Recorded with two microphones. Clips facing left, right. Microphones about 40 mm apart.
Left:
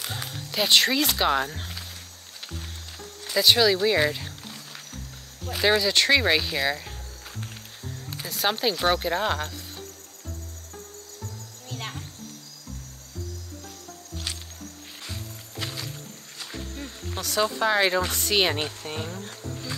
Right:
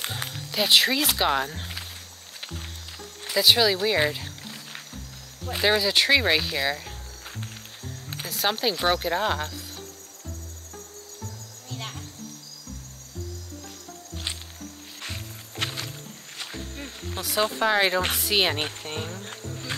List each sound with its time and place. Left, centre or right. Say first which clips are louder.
0.3 s speech: even; centre
3.3 s speech: left 1 dB; centre
4.1 s rowboat: even; centre
4.9 s speech: even; centre
8.3 s speech: even; centre
15.0 s music: right 2 dB; right
17.0 s a sound: even; centre
17.6 s speech: even; centre